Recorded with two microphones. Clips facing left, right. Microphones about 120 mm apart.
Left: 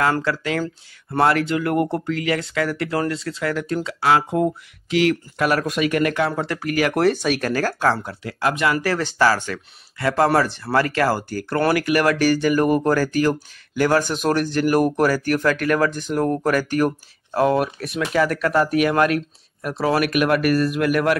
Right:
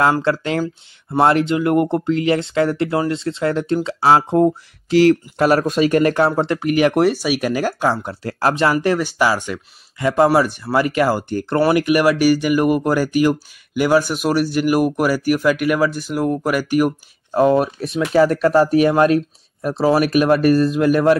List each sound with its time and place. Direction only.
0.2 s speech: 30° right (ahead or behind)
8.1 s speech: 40° right (ahead or behind)
8.7 s speech: 15° right (ahead or behind)